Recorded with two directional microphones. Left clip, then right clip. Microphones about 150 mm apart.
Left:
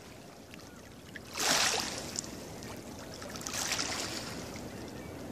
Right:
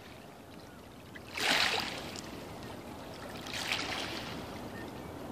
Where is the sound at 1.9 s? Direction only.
15° left (ahead or behind).